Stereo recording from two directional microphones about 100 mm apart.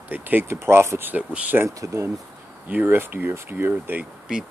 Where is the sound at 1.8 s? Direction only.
30° right (ahead or behind).